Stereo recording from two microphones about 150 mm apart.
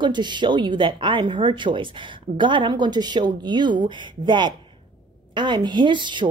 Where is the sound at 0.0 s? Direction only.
30° right (ahead or behind).